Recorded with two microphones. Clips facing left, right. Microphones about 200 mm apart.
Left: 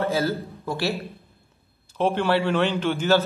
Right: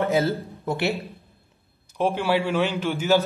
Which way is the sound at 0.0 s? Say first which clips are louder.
Right 2 dB; 20° right (ahead or behind).